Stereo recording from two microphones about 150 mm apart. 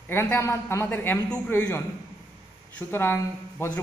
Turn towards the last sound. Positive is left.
turn(degrees=15)  # may be behind; listen again after turning